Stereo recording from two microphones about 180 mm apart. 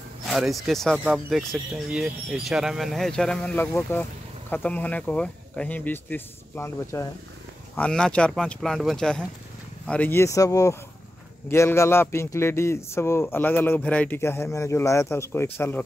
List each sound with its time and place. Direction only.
0.3 s a man's voice: centre (ahead or behind)